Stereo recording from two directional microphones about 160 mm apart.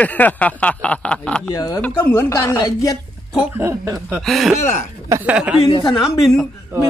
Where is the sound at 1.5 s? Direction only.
20° left (ahead or behind).